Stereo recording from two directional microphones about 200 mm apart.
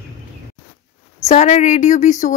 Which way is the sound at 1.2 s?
35° left (ahead or behind).